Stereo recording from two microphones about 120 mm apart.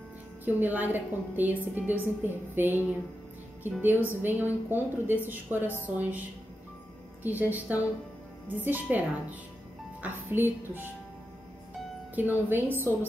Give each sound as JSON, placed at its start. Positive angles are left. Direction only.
{"t": 0.5, "sound": "a woman's voice", "side_deg": -15}
{"t": 7.2, "sound": "a woman's voice", "side_deg": -15}
{"t": 12.2, "sound": "speech", "side_deg": -15}